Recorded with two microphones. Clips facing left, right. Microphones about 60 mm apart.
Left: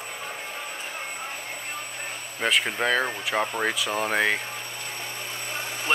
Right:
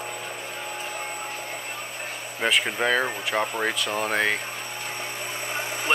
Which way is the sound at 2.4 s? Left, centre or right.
Centre.